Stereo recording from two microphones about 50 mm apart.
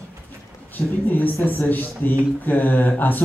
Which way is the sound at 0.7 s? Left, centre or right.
Left.